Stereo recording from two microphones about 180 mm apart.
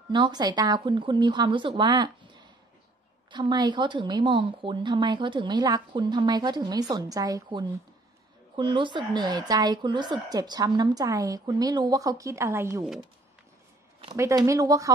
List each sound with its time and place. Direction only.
0.1 s speech: 25° right (ahead or behind)
14.1 s speech: 15° right (ahead or behind)